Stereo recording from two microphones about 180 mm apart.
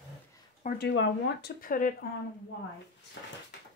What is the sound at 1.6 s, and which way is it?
Speech, 50° left (ahead or behind).